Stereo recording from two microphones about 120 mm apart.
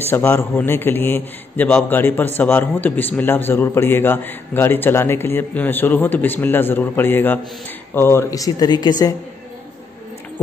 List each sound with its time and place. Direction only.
0.1 s a man's voice: 20° left (ahead or behind); by 9.1 s 35° left (ahead or behind)